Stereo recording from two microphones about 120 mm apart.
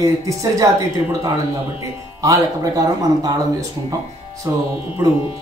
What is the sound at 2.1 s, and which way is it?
Speech, 30° right (ahead or behind).